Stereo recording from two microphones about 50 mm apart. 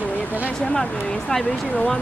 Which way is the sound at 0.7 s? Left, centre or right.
Centre.